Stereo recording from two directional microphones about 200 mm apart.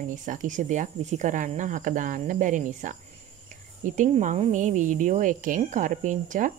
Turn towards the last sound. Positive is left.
turn(degrees=-40)  # may be behind; listen again after turning